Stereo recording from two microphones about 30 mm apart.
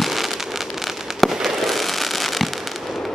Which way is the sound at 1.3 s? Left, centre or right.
Centre.